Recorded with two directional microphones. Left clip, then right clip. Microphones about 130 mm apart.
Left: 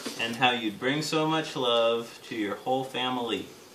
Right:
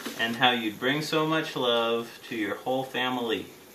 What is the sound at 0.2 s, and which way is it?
Speech, centre (ahead or behind).